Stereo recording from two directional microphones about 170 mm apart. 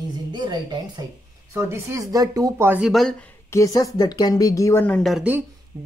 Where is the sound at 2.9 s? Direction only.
5° left (ahead or behind).